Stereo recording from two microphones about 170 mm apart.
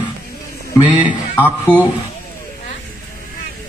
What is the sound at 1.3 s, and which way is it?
Speech, 10° left (ahead or behind).